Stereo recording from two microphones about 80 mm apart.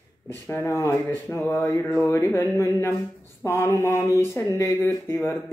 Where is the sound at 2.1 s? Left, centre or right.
Left.